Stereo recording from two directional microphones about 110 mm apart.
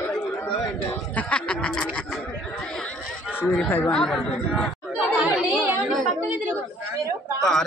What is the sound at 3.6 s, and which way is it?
Speech, 15° left (ahead or behind).